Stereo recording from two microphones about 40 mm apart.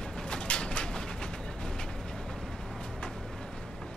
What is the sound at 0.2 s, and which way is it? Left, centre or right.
Bird, left.